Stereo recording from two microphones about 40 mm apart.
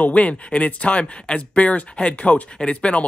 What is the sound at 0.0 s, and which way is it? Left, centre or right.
Speech, left.